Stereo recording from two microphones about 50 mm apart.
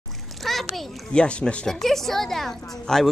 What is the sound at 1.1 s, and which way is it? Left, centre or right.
Speech, centre.